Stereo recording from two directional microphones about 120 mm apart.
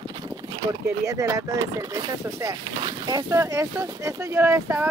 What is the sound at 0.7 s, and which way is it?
Speech, 25° right (ahead or behind).